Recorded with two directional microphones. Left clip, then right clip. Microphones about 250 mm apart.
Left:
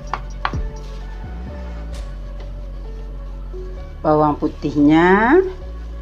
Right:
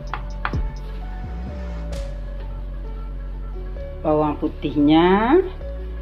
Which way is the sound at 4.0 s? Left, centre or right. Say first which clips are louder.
Left 4 dB; centre.